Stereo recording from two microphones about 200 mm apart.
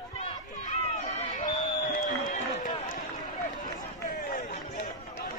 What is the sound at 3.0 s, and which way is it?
Run, 45° left (ahead or behind).